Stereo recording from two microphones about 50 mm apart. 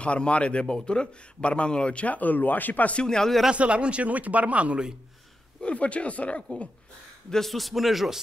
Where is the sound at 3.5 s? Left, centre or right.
Right.